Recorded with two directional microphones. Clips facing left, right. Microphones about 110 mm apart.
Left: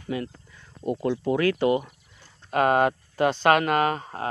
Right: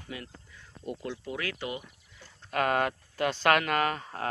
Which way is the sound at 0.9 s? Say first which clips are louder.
Left 12 dB; 55° left (ahead or behind).